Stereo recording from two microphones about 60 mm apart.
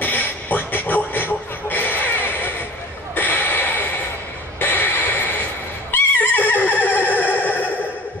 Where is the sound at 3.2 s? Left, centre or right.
Left.